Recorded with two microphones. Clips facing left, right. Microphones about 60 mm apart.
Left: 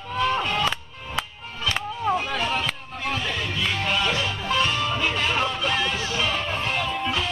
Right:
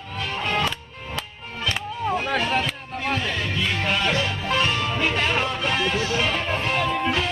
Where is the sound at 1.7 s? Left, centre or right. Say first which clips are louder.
Left 1 dB; centre.